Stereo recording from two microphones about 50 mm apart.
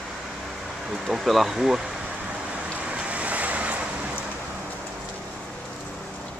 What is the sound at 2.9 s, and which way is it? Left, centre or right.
Vehicle, right.